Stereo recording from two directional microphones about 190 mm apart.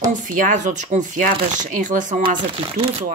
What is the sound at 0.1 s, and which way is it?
Speech, 40° right (ahead or behind).